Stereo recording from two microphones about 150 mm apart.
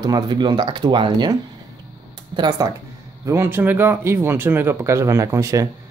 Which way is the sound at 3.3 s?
15° right (ahead or behind).